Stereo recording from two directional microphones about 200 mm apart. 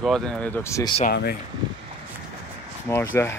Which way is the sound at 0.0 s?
Centre (ahead or behind).